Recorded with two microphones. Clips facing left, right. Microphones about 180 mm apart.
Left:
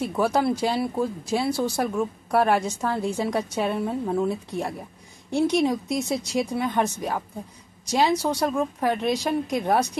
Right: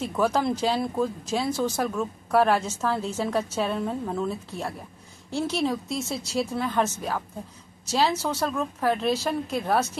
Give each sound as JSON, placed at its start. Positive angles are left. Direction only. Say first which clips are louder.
{"t": 0.0, "sound": "speech", "louder": "left 2 dB", "side_deg": 10}